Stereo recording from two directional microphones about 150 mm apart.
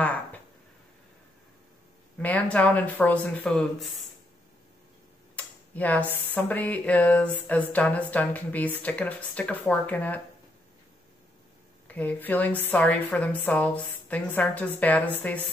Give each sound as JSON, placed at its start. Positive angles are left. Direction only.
{"t": 0.0, "sound": "speech", "side_deg": 10}
{"t": 2.1, "sound": "speech", "side_deg": 10}
{"t": 5.3, "sound": "a sound", "side_deg": 10}
{"t": 7.4, "sound": "speech", "side_deg": 10}
{"t": 11.9, "sound": "speech", "side_deg": 10}